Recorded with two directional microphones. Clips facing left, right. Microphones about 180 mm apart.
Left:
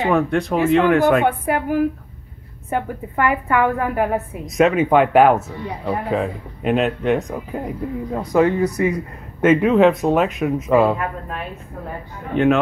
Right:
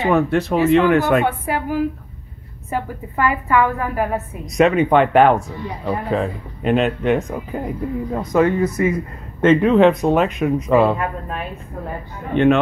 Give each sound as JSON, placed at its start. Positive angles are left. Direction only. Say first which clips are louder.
{"t": 0.0, "sound": "speech", "louder": "right 1 dB", "side_deg": 0}
{"t": 1.2, "sound": "a woman's voice", "louder": "left 2 dB", "side_deg": 55}
{"t": 4.5, "sound": "speech", "louder": "right 1 dB", "side_deg": 0}
{"t": 12.3, "sound": "speech", "louder": "right 2 dB", "side_deg": 5}